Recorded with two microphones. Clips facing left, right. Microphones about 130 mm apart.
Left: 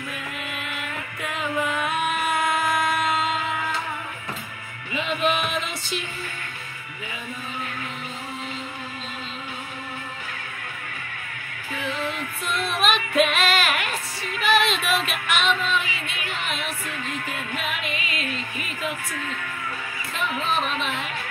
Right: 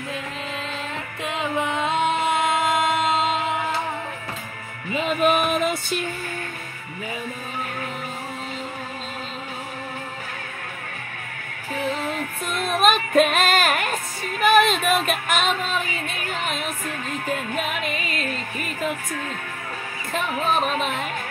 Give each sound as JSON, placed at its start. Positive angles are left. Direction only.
{"t": 0.5, "sound": "music", "side_deg": -30}
{"t": 4.9, "sound": "music", "side_deg": -45}
{"t": 11.7, "sound": "music", "side_deg": -40}